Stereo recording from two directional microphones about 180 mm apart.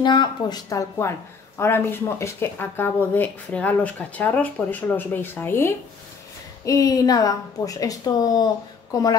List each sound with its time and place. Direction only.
0.0 s a woman's voice: 25° left (ahead or behind)